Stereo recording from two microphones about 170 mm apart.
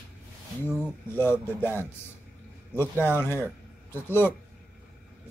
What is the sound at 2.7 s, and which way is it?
Speech, 10° left (ahead or behind).